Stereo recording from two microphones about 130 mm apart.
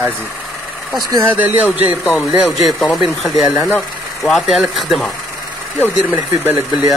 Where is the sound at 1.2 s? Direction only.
15° right (ahead or behind).